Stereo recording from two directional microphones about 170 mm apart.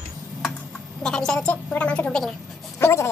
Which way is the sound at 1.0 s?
5° left (ahead or behind).